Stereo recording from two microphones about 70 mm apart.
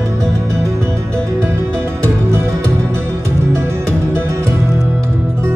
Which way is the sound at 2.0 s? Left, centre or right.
Right.